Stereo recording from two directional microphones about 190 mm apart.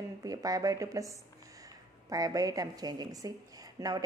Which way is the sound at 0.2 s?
20° right (ahead or behind).